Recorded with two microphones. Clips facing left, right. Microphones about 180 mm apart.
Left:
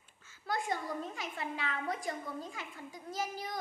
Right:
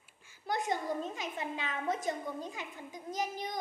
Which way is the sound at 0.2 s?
15° right (ahead or behind).